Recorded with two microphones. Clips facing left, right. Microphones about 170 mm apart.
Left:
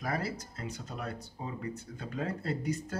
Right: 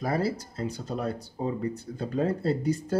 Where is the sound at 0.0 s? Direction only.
30° right (ahead or behind).